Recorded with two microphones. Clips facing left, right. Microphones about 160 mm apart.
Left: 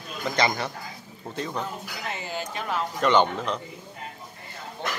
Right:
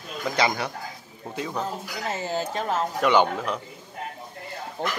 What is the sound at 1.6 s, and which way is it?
Speech, 40° right (ahead or behind).